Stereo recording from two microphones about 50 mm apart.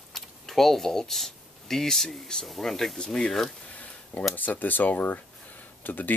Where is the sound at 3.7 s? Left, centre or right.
Left.